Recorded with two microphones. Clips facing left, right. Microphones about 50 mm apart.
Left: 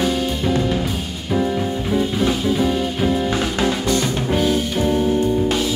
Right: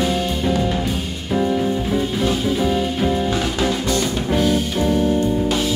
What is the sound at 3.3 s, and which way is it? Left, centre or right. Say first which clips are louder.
Music: even; centre.